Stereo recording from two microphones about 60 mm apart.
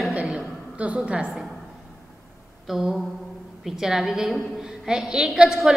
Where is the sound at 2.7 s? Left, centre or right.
Centre.